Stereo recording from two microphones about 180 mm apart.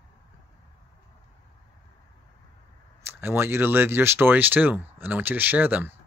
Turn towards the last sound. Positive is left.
turn(degrees=-10)  # may be behind; listen again after turning